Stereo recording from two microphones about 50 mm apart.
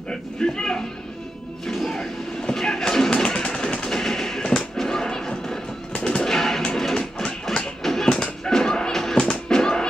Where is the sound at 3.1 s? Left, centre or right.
Centre.